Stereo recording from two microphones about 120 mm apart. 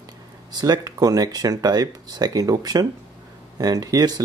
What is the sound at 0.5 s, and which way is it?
Speech, 30° right (ahead or behind).